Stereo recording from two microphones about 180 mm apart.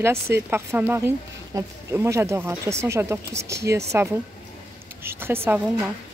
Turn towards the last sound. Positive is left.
turn(degrees=-10)  # may be behind; listen again after turning